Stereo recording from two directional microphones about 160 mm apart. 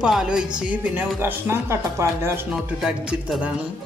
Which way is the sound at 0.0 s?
5° right (ahead or behind).